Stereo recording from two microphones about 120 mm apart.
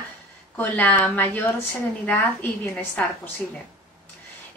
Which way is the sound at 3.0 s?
10° left (ahead or behind).